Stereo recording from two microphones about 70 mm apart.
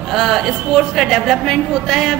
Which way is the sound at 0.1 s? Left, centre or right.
Centre.